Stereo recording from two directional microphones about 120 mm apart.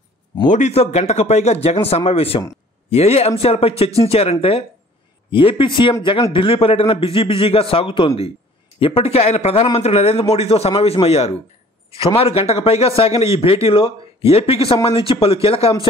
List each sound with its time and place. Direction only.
0.5 s a man's voice: 75° left (ahead or behind); by 15.7 s 50° left (ahead or behind)